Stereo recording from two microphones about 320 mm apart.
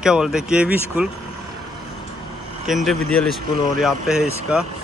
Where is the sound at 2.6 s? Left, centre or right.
Centre.